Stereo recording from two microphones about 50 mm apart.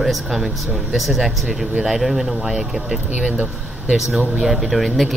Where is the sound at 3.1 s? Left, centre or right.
Right.